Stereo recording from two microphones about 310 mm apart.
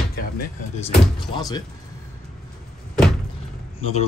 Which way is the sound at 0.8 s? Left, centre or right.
Centre.